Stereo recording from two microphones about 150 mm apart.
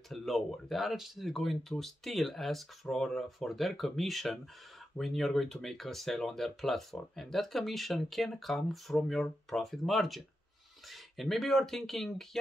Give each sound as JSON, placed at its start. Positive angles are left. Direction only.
{"t": 0.1, "sound": "speech", "side_deg": 0}